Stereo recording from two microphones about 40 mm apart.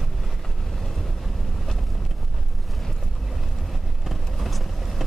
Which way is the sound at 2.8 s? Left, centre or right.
Centre.